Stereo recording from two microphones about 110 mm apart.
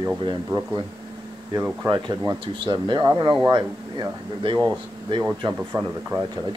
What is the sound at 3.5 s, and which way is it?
Speech, 35° right (ahead or behind).